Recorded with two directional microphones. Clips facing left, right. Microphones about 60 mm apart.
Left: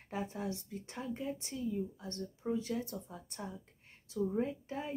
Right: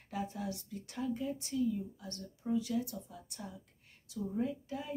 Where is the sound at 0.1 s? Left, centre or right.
Left.